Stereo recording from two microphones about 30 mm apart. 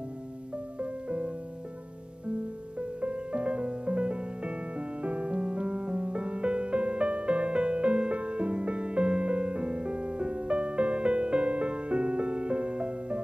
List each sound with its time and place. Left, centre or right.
0.7 s music: right
2.8 s music: right